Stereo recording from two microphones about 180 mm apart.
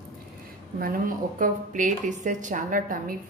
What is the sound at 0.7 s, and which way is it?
A woman's voice, 55° right (ahead or behind).